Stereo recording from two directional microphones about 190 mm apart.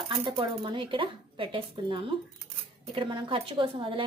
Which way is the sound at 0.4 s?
25° right (ahead or behind).